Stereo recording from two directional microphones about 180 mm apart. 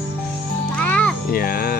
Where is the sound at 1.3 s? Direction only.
55° left (ahead or behind).